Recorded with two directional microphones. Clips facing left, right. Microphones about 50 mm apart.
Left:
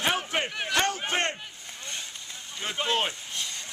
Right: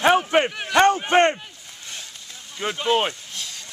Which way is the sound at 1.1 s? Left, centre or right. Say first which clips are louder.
Right 11 dB; right.